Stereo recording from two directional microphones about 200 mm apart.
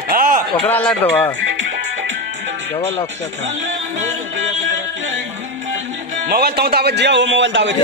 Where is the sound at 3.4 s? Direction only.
70° right (ahead or behind).